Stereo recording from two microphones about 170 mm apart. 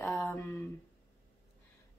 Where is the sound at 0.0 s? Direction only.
10° left (ahead or behind).